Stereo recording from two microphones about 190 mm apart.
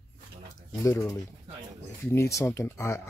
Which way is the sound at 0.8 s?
15° left (ahead or behind).